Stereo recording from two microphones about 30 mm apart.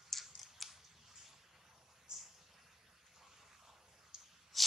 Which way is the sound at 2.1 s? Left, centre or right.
Right.